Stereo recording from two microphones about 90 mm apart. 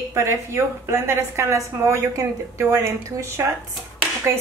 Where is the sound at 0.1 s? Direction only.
30° right (ahead or behind).